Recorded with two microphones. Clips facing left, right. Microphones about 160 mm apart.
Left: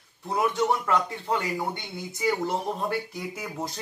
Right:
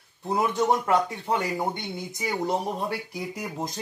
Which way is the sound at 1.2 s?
20° right (ahead or behind).